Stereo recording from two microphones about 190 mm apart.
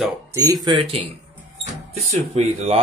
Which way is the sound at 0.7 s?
30° right (ahead or behind).